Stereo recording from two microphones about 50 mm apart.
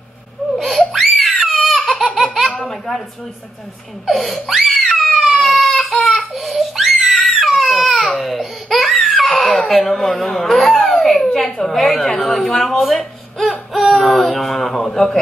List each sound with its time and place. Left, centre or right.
0.5 s baby cry: centre
2.0 s laughter: centre
2.5 s a sound: centre
4.0 s laughter: centre
5.5 s baby cry: centre
8.1 s laughter: centre
9.1 s baby laughter: centre
9.6 s speech: centre
14.9 s a man's voice: centre